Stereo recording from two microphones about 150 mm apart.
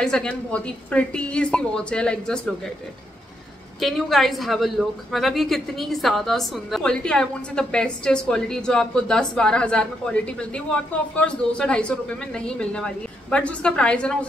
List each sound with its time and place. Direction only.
0.0 s a woman's voice: 5° left (ahead or behind)
3.8 s a woman's voice: centre (ahead or behind)